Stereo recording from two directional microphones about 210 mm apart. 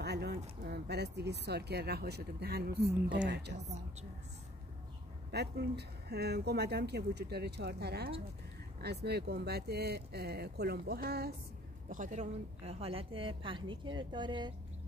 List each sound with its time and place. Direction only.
0.0 s pigeon: 50° right (ahead or behind)
0.7 s speech: 50° right (ahead or behind)
5.3 s speech: 50° right (ahead or behind)
11.9 s a woman's voice: 35° right (ahead or behind); by 14.5 s 20° right (ahead or behind)